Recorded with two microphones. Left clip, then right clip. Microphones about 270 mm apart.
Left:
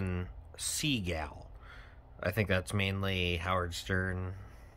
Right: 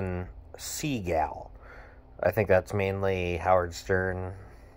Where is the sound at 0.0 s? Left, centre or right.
Centre.